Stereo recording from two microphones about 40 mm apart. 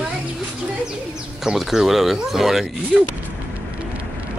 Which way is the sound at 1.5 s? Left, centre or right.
Centre.